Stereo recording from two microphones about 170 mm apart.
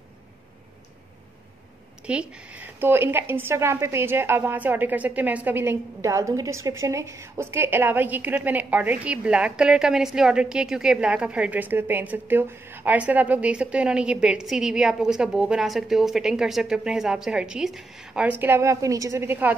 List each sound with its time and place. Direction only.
2.0 s a woman's voice: 5° right (ahead or behind)
18.4 s a woman's voice: 15° right (ahead or behind)